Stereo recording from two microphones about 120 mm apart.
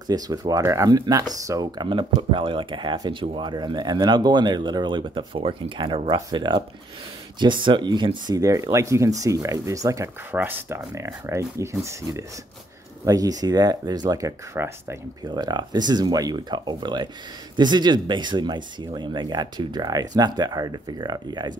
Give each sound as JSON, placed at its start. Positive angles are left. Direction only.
{"t": 0.1, "sound": "speech", "side_deg": -30}
{"t": 8.4, "sound": "speech", "side_deg": -25}
{"t": 10.3, "sound": "speech", "side_deg": -15}
{"t": 15.2, "sound": "speech", "side_deg": -35}